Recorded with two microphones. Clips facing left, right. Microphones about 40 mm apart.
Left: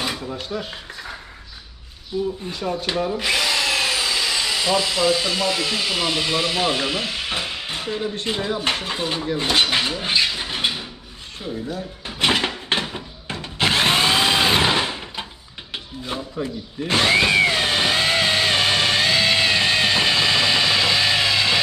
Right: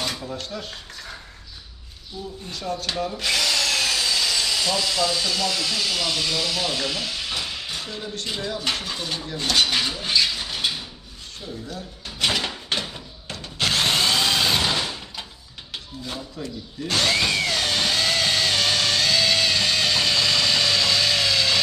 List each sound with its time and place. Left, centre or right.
0.0 s dishes: centre
2.4 s speech: left
11.6 s drawer open or close: left
15.7 s tools: left